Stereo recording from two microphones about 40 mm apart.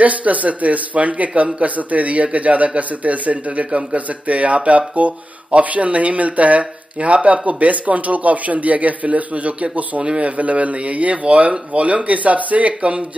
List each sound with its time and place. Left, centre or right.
0.0 s speech: right